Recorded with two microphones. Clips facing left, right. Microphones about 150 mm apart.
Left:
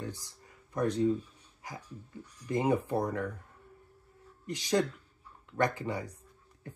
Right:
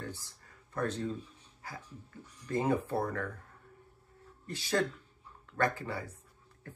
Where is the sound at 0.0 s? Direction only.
15° left (ahead or behind).